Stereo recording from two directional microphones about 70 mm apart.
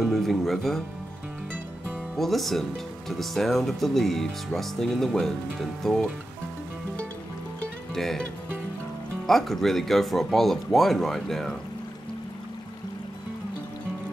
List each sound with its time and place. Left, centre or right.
0.0 s speech: centre
2.1 s speech: centre
7.9 s music: centre
9.2 s speech: centre